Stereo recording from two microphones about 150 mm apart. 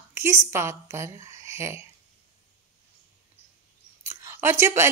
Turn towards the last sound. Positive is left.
turn(degrees=-15)  # may be behind; listen again after turning